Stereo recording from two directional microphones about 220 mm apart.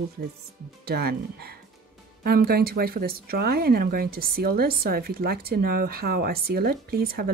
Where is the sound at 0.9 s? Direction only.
45° right (ahead or behind).